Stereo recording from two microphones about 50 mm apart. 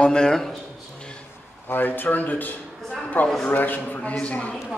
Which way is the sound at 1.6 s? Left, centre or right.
Left.